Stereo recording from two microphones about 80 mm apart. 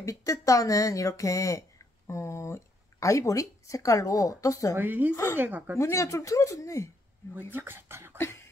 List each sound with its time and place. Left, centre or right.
0.0 s speech: left
4.7 s speech: right
5.1 s speech: left
5.4 s speech: right
5.8 s speech: left
7.5 s speech: right
8.2 s cough: left